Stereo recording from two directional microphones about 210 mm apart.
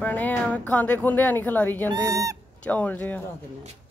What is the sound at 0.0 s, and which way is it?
A woman's voice, 10° left (ahead or behind).